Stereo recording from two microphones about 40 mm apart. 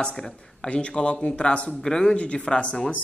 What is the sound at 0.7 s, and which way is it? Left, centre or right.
Speech, left.